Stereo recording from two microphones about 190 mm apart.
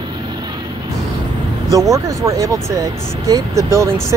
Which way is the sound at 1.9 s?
20° right (ahead or behind).